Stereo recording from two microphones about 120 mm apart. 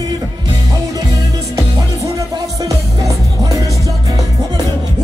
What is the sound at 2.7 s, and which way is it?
Music, 30° right (ahead or behind).